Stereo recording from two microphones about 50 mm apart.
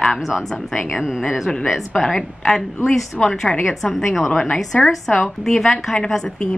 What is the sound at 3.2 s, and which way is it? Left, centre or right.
A woman's voice, centre.